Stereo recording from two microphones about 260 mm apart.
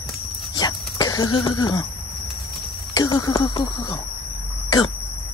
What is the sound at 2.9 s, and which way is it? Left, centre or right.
Speech, centre.